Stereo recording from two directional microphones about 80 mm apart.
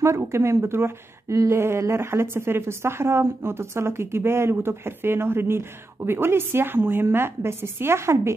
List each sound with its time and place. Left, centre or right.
0.0 s speech: right